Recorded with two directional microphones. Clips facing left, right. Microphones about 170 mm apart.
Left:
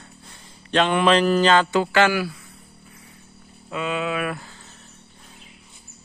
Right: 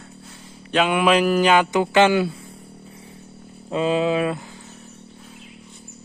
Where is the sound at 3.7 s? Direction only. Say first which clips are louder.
Right 6 dB; 30° right (ahead or behind); by 4.7 s 15° right (ahead or behind).